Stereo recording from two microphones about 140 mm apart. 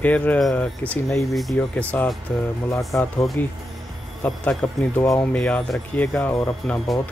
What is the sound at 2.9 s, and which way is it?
Speech, 20° left (ahead or behind).